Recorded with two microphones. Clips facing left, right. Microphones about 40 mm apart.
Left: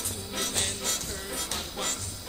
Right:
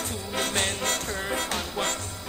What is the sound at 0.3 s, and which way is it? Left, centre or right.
Music, right.